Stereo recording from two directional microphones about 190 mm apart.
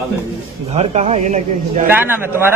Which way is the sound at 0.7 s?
35° right (ahead or behind).